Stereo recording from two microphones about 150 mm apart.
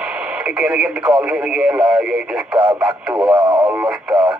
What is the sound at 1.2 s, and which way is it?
Speech, 5° right (ahead or behind).